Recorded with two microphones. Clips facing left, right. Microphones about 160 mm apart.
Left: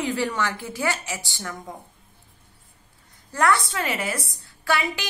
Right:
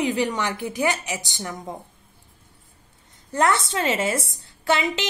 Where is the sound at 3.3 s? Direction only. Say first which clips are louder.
Right 1 dB; 20° right (ahead or behind).